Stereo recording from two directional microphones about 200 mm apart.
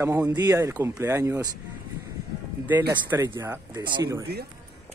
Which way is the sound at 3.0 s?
10° right (ahead or behind).